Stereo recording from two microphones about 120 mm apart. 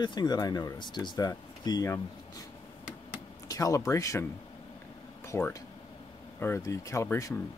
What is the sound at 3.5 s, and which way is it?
Speech, 30° left (ahead or behind).